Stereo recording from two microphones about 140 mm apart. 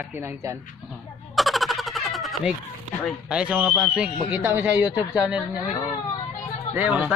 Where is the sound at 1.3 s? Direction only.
Centre (ahead or behind).